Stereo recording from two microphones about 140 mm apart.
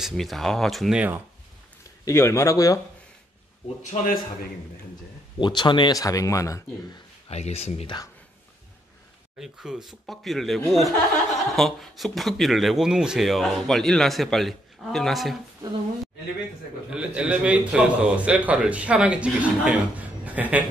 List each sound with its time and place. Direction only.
0.0 s speech: centre (ahead or behind)
2.0 s speech: 20° left (ahead or behind)
3.8 s speech: 65° left (ahead or behind)
5.4 s speech: 35° left (ahead or behind)
7.2 s speech: 50° left (ahead or behind)
9.4 s speech: 5° right (ahead or behind)
16.9 s a man's voice: 5° right (ahead or behind)